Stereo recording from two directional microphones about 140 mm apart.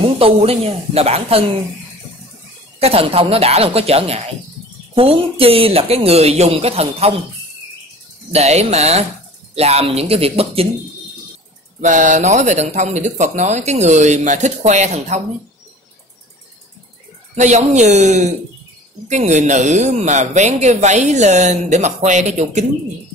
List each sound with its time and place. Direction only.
0.2 s speech: 45° right (ahead or behind)
2.8 s speech: 45° right (ahead or behind)
8.3 s speech: 50° right (ahead or behind)
11.8 s a man's voice: 60° right (ahead or behind)
17.4 s a man's voice: 55° right (ahead or behind)